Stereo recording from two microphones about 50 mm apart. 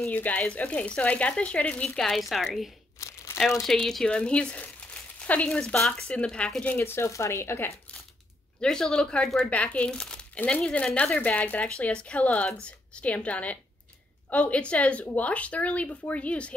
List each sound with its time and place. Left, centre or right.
0.1 s speech: left
0.7 s speech: left
2.0 s a woman's voice: centre
3.0 s crumpling: left
3.7 s speech: centre
6.8 s speech: left
8.6 s a woman's voice: centre